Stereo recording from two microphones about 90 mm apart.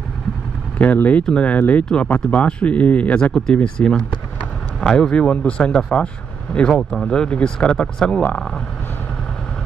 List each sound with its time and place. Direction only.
0.7 s speech: 15° left (ahead or behind)